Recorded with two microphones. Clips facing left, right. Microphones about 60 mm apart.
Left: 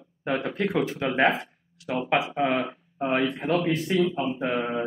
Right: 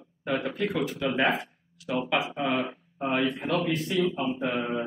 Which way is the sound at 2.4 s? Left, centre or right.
Left.